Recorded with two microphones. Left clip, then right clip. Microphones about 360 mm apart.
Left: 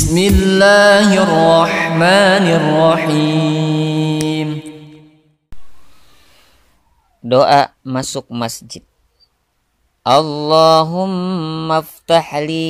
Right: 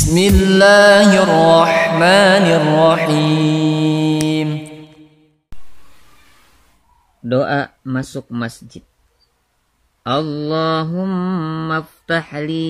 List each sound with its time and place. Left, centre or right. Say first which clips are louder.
0.0 s music: even; centre
5.5 s a sound: even; centre
7.2 s mantra: left 7 dB; centre
10.0 s mantra: left 7 dB; centre